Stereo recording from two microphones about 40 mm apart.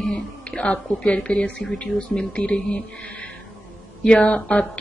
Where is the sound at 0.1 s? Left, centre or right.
Left.